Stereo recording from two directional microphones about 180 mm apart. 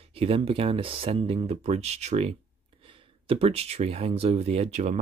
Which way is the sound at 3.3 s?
35° right (ahead or behind).